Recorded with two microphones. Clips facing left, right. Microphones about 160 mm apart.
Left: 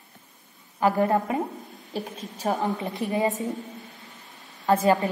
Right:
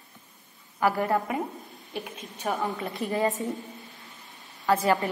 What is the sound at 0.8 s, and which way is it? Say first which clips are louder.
Speech: left 3 dB; 20° left (ahead or behind).